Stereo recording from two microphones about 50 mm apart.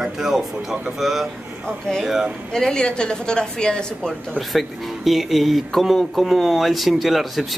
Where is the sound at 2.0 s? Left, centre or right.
Centre.